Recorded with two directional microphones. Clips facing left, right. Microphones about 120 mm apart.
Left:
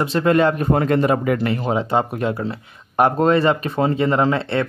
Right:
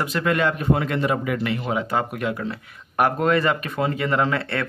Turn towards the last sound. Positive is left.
turn(degrees=25)  # may be behind; listen again after turning